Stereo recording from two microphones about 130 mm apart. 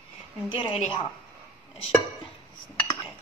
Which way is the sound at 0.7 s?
50° left (ahead or behind).